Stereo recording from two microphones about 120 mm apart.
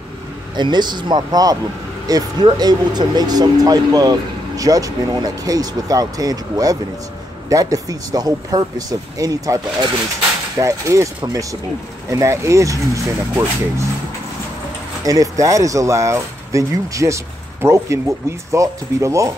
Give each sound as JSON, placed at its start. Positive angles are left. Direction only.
{"t": 0.6, "sound": "speech", "side_deg": -40}
{"t": 12.1, "sound": "speech", "side_deg": -25}
{"t": 15.0, "sound": "speech", "side_deg": -30}